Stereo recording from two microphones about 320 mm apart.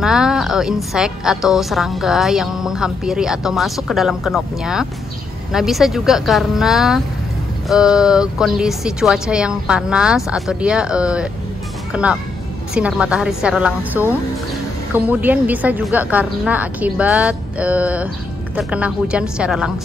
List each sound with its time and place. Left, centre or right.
0.0 s a woman's voice: centre